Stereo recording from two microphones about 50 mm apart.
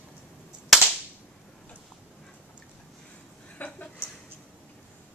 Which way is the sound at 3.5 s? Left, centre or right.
Left.